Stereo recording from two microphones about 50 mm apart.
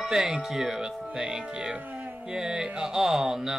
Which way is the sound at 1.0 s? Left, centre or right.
Centre.